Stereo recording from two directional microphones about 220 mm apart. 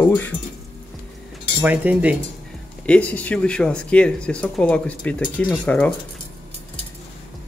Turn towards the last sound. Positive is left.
turn(degrees=5)  # may be behind; listen again after turning